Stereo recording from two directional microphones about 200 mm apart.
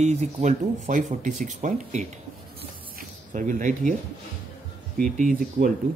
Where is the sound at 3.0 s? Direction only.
40° right (ahead or behind).